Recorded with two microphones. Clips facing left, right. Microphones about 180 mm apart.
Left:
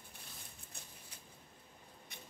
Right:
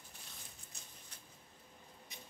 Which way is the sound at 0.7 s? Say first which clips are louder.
Left 5 dB; 60° left (ahead or behind).